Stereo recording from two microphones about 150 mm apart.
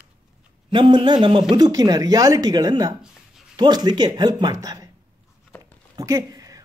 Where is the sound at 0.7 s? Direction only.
35° right (ahead or behind).